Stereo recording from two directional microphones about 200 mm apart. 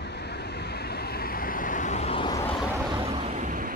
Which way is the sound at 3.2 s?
35° right (ahead or behind).